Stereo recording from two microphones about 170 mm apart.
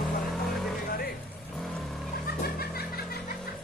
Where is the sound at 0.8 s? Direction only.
60° left (ahead or behind).